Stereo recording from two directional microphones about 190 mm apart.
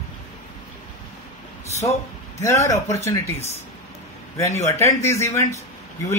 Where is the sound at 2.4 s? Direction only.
15° left (ahead or behind).